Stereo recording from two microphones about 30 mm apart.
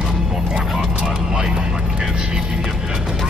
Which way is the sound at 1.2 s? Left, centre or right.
Right.